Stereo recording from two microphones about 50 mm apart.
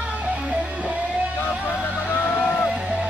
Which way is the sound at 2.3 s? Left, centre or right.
Centre.